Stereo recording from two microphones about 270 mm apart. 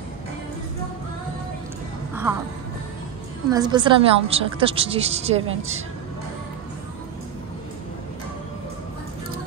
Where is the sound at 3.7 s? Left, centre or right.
Centre.